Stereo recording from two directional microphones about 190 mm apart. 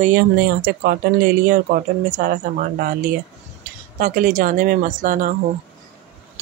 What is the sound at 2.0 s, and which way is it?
Speech, 45° right (ahead or behind).